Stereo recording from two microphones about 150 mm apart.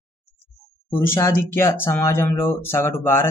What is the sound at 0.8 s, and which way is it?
Speech, 15° left (ahead or behind).